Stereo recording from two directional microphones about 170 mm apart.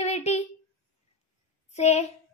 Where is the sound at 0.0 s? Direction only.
40° left (ahead or behind).